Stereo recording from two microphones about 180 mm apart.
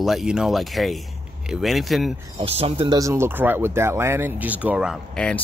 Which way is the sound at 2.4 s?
35° right (ahead or behind).